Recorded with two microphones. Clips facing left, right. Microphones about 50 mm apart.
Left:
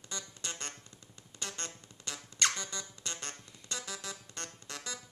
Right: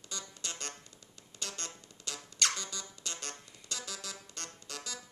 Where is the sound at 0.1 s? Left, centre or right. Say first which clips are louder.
Left 1 dB; left.